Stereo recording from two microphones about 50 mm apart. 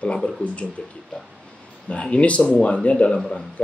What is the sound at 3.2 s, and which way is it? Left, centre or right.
Speech, centre.